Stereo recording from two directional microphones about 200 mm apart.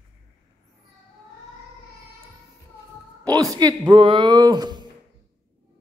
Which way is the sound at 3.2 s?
20° right (ahead or behind).